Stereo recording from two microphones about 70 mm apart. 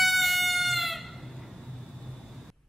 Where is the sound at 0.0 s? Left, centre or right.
Centre.